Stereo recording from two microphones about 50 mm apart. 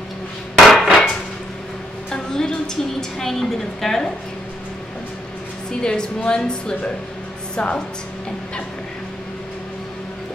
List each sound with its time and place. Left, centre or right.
0.7 s hammer: centre
2.0 s a woman's voice: centre
5.7 s a woman's voice: centre